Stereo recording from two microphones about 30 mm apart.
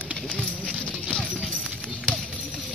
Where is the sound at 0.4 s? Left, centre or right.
Left.